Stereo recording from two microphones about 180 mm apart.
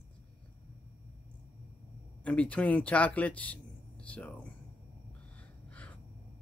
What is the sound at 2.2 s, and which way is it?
Speech, 5° left (ahead or behind).